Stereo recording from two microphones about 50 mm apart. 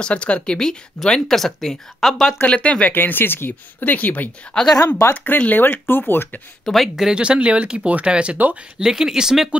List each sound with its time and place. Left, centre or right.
0.0 s speech: left; by 2.3 s centre
2.4 s speech: left
2.9 s speech: left
3.9 s speech: left
4.6 s speech: centre
5.1 s speech: left
6.6 s speech: centre
7.1 s speech: right
8.7 s speech: centre